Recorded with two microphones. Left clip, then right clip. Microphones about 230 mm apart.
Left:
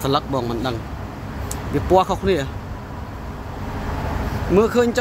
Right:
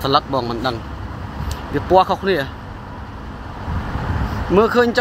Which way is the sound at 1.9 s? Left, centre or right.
Centre.